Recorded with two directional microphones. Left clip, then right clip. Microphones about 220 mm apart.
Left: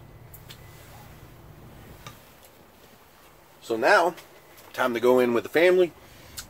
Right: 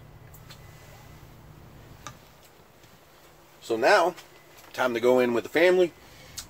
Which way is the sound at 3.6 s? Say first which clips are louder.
Left 1 dB; centre (ahead or behind).